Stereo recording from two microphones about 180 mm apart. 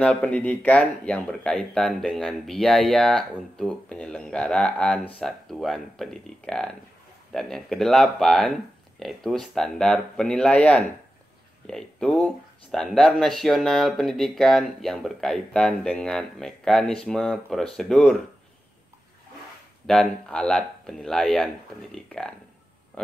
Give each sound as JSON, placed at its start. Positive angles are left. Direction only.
{"t": 0.0, "sound": "speech", "side_deg": 5}
{"t": 19.9, "sound": "speech", "side_deg": 5}